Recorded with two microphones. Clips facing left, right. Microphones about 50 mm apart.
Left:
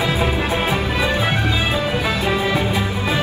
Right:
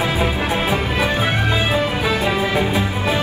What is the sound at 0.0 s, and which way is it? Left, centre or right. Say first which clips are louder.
Music: even; right.